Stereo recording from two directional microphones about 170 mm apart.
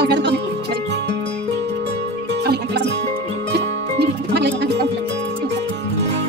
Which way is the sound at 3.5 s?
75° right (ahead or behind).